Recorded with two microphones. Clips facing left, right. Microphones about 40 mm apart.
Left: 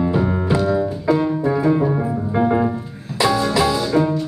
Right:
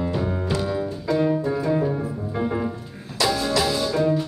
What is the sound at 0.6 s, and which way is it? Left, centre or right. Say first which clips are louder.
Music: left 7 dB; centre.